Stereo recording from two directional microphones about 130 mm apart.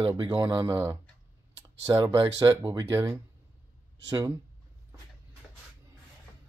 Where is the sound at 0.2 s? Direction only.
35° right (ahead or behind).